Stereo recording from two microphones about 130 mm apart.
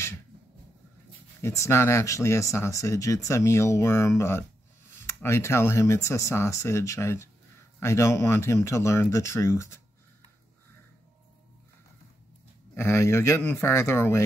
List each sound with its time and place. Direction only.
1.4 s speech: 20° left (ahead or behind)
12.7 s speech: 20° left (ahead or behind)